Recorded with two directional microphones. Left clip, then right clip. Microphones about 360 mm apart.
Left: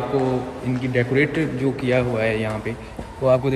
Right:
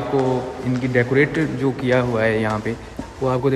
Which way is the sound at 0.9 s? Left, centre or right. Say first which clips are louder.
Right 2 dB; centre.